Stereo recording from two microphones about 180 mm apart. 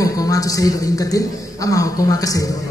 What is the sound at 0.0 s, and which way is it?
A man's voice, 20° left (ahead or behind).